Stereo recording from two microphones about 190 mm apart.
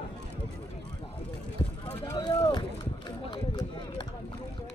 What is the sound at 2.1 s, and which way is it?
Speech, 25° left (ahead or behind).